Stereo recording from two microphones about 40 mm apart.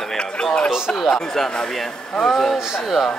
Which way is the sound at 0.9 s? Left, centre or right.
Centre.